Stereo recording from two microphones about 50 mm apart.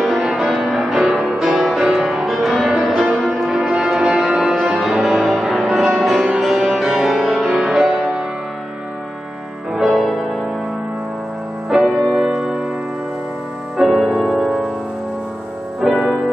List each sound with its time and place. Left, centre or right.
0.3 s music: centre
4.6 s music: centre
9.8 s music: centre
11.7 s music: centre
13.8 s music: centre
15.8 s music: centre